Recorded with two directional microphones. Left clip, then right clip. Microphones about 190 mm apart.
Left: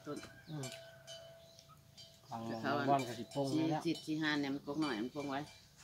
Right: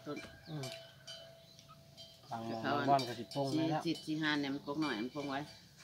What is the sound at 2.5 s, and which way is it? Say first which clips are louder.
Speech: right 1 dB; centre (ahead or behind).